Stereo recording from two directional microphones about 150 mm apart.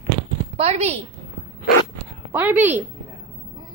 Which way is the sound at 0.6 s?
45° right (ahead or behind).